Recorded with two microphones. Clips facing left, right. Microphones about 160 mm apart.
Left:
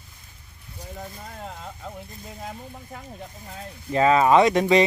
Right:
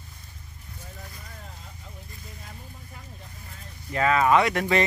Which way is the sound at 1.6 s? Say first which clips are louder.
Left 10 dB; 75° left (ahead or behind).